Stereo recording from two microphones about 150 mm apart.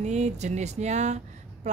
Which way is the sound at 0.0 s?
50° right (ahead or behind).